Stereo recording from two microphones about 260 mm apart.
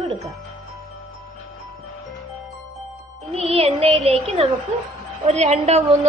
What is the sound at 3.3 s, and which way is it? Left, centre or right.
A woman's voice, right.